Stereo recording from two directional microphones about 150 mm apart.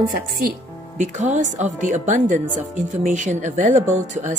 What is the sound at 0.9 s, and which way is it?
Speech, 55° right (ahead or behind).